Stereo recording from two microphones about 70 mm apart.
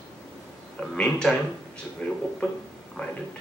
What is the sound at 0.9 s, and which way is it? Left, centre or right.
Speech, centre.